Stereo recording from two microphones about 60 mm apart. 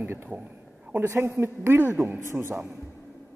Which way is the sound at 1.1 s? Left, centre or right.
Right.